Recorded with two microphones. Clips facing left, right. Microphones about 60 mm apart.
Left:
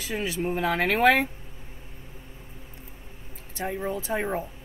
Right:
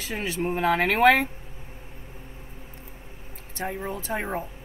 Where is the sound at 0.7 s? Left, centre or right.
Centre.